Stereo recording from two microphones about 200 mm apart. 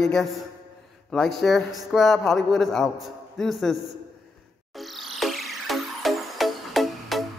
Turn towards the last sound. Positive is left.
turn(degrees=0)  # may be behind; listen again after turning